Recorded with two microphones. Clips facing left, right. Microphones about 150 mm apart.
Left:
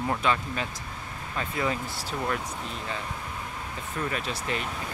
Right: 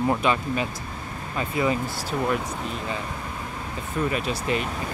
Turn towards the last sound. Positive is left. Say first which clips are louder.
# right 5 dB
turn(degrees=-15)  # may be behind; listen again after turning